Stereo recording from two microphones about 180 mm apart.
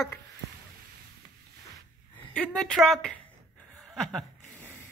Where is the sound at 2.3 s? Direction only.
5° left (ahead or behind).